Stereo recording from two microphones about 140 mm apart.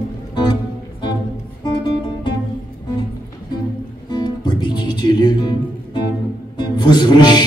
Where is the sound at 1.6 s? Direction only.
30° left (ahead or behind).